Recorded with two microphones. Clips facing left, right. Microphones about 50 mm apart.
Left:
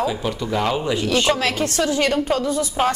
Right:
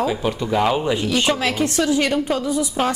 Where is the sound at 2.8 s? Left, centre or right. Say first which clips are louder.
Left 2 dB; centre.